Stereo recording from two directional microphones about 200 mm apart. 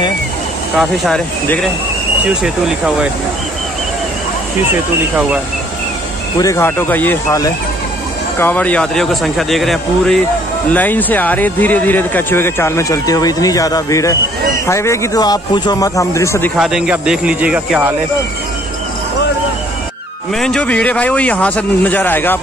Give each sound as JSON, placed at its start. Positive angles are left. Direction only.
{"t": 0.7, "sound": "speech", "side_deg": 0}
{"t": 6.4, "sound": "speech", "side_deg": 10}
{"t": 16.5, "sound": "speech", "side_deg": 0}
{"t": 20.3, "sound": "speech", "side_deg": 5}